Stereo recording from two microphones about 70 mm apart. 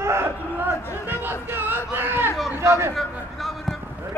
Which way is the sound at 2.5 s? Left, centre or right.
Right.